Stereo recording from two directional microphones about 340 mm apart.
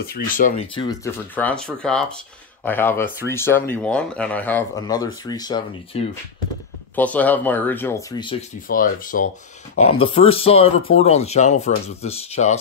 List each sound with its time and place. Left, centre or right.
0.0 s speech: left